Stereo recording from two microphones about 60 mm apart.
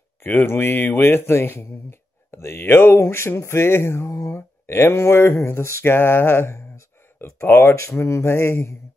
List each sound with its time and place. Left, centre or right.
0.2 s speech: left